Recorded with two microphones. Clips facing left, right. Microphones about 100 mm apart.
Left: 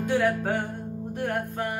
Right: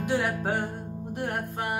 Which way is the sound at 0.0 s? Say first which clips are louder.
Left 3 dB; 20° right (ahead or behind).